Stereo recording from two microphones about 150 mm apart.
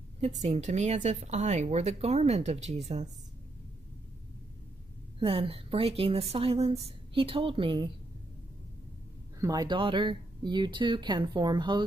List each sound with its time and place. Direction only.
0.2 s speech: 45° right (ahead or behind)
5.2 s speech: 40° right (ahead or behind)
9.4 s speech: 25° right (ahead or behind)